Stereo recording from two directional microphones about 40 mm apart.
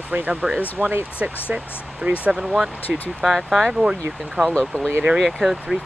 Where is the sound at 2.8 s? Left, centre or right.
Left.